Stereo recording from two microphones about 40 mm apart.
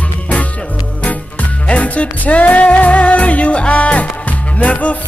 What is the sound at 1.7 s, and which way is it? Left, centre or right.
Music, left.